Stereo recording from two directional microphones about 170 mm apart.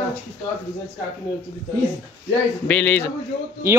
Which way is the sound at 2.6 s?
5° left (ahead or behind).